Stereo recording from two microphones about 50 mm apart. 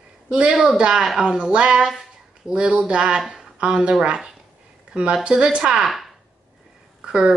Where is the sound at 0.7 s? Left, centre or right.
Centre.